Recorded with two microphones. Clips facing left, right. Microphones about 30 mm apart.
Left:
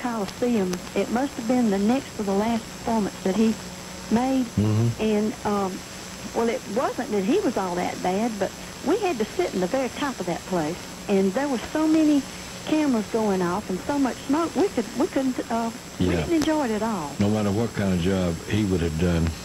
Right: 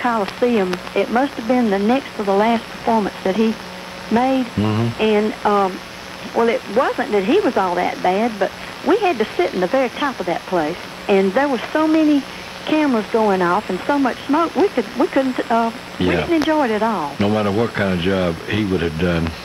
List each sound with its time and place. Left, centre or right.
0.0 s speech: right